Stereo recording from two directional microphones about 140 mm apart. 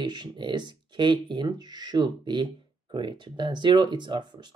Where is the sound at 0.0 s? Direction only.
30° right (ahead or behind).